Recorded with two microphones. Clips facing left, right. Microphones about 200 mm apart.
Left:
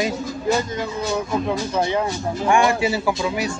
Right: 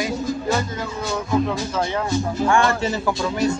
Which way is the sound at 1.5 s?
15° left (ahead or behind).